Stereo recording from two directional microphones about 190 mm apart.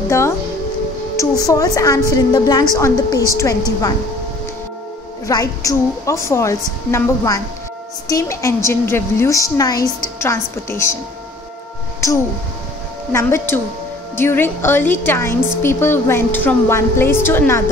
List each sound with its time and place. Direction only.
1.1 s a woman's voice: 20° left (ahead or behind)
5.2 s a woman's voice: 20° left (ahead or behind)
12.0 s a woman's voice: 15° left (ahead or behind)